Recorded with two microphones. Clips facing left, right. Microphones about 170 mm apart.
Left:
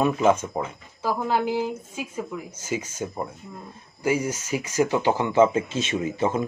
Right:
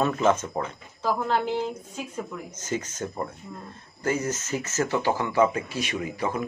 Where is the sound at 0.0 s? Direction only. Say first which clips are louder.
Left 2 dB; 10° left (ahead or behind).